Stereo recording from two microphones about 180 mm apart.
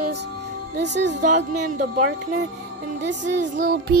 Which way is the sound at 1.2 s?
45° right (ahead or behind).